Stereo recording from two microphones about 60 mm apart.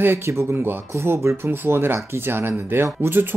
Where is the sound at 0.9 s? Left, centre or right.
Right.